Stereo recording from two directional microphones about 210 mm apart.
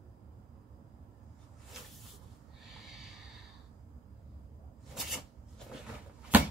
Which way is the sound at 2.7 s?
Centre (ahead or behind).